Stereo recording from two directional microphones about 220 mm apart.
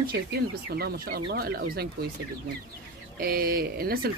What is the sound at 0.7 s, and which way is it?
Speech, 45° right (ahead or behind).